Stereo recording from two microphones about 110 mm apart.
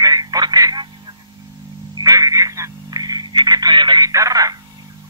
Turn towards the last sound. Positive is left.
turn(degrees=-30)  # may be behind; listen again after turning